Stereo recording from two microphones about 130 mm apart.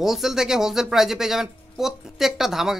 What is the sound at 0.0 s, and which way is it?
Speech, 5° right (ahead or behind).